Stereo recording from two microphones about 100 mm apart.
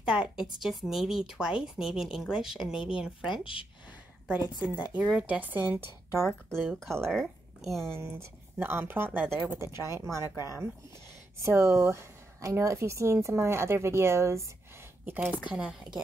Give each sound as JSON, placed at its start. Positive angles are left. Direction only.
{"t": 0.0, "sound": "a woman's voice", "side_deg": -5}
{"t": 4.6, "sound": "speech", "side_deg": -10}
{"t": 6.2, "sound": "a woman's voice", "side_deg": 5}
{"t": 7.9, "sound": "a woman's voice", "side_deg": -25}
{"t": 10.2, "sound": "speech", "side_deg": 40}
{"t": 11.3, "sound": "a woman's voice", "side_deg": -30}
{"t": 15.4, "sound": "speech", "side_deg": -10}